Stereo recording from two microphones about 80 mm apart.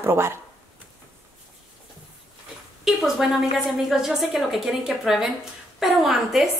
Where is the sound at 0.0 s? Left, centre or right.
Right.